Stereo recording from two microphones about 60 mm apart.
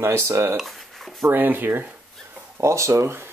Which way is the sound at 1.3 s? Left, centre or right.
Right.